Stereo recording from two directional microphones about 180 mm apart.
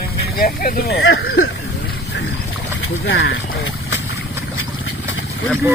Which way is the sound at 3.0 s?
75° left (ahead or behind).